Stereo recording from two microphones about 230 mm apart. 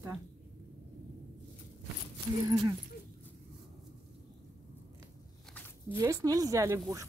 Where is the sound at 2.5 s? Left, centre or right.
Centre.